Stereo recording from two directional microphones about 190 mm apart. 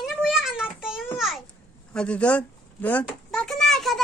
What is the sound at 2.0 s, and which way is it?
Speech, 5° left (ahead or behind).